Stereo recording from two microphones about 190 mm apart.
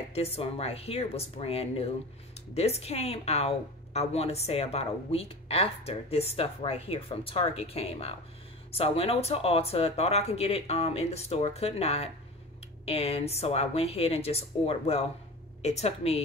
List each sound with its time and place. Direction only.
0.1 s a woman's voice: 30° left (ahead or behind)